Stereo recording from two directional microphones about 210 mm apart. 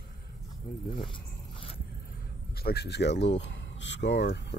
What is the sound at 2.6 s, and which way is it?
Speech, 50° left (ahead or behind).